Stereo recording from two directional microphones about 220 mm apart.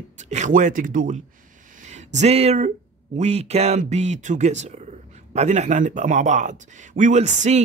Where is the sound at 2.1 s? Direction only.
30° right (ahead or behind).